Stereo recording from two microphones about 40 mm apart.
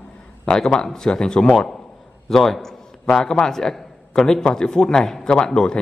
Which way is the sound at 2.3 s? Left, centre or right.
Centre.